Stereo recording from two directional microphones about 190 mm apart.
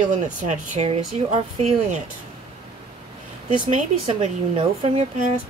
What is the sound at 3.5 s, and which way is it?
A woman's voice, 35° right (ahead or behind).